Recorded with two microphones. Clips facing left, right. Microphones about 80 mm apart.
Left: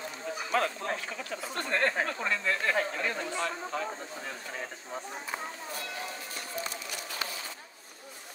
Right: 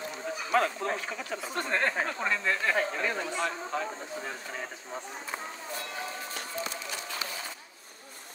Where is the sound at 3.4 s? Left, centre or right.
Centre.